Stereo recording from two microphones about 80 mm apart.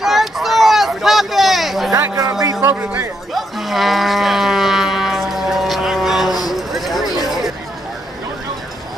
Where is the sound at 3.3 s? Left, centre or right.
Centre.